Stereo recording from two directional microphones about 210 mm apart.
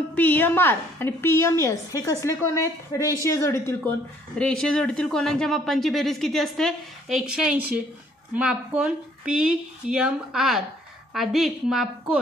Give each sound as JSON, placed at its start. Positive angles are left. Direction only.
{"t": 0.1, "sound": "a woman's voice", "side_deg": 10}